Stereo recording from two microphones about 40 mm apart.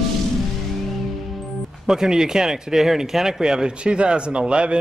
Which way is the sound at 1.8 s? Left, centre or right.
Centre.